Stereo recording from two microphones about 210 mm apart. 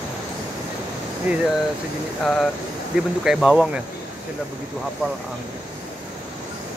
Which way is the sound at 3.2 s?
Centre (ahead or behind).